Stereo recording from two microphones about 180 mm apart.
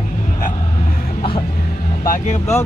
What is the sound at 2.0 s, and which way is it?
Speech, 45° left (ahead or behind).